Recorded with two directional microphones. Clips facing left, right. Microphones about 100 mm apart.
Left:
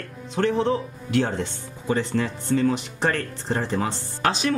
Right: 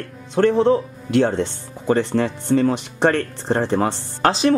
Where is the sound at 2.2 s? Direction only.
45° right (ahead or behind).